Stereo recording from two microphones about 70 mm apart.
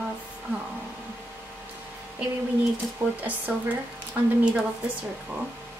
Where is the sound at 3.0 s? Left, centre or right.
Right.